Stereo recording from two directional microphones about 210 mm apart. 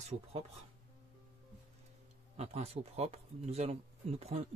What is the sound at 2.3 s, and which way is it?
Speech, 30° right (ahead or behind).